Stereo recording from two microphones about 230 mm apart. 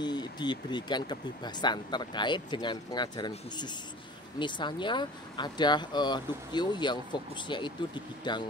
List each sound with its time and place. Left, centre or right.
0.0 s speech: centre